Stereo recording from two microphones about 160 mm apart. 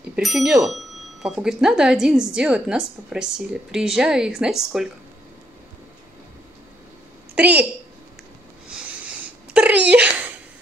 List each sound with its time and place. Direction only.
0.1 s a woman's voice: 5° right (ahead or behind)
7.3 s a woman's voice: 10° right (ahead or behind)
8.6 s a sound: 5° right (ahead or behind)